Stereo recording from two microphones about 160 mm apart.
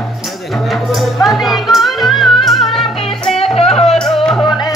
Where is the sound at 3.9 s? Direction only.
Centre (ahead or behind).